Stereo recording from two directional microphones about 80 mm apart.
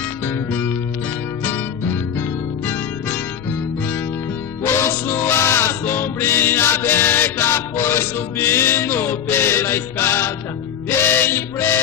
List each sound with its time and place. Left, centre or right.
0.5 s music: left
2.1 s music: left
4.6 s music: left